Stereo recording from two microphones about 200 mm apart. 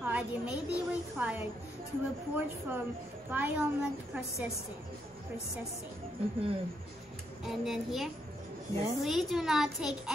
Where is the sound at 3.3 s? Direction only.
10° right (ahead or behind).